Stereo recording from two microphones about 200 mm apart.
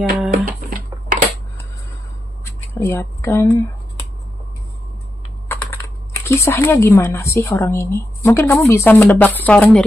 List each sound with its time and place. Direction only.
0.3 s music: 45° right (ahead or behind)
2.7 s a woman's voice: 15° left (ahead or behind)
6.2 s a woman's voice: 15° left (ahead or behind)